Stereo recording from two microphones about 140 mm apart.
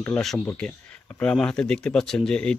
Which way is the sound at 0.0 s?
5° left (ahead or behind).